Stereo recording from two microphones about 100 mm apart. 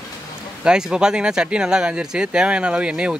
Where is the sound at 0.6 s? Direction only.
10° right (ahead or behind).